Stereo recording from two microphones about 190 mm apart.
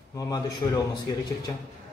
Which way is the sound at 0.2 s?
20° left (ahead or behind).